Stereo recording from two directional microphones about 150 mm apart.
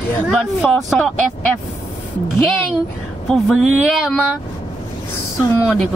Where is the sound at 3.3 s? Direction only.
Centre (ahead or behind).